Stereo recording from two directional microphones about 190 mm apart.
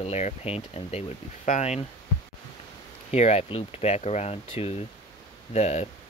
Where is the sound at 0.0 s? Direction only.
35° left (ahead or behind).